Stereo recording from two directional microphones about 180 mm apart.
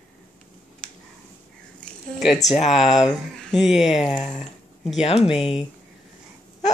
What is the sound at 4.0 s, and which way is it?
Speech, 25° left (ahead or behind).